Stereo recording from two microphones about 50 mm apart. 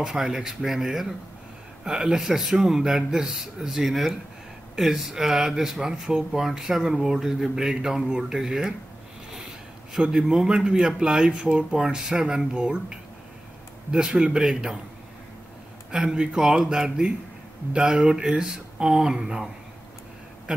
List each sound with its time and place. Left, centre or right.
0.0 s speech: centre
9.9 s speech: centre
15.9 s speech: centre